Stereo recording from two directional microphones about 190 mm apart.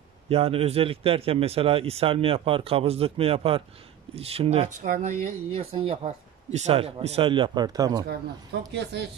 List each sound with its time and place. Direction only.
0.3 s a man's voice: 30° right (ahead or behind)
8.5 s speech: 65° right (ahead or behind)